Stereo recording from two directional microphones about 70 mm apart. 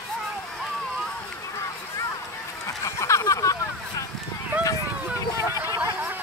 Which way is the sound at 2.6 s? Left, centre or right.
Left.